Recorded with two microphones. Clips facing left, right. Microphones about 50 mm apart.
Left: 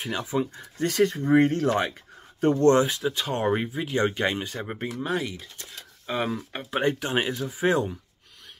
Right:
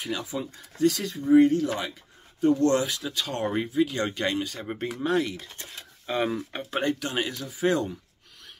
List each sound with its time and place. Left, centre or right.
0.0 s speech: left
0.8 s speech: left
2.6 s speech: left
5.0 s speech: centre
6.8 s speech: left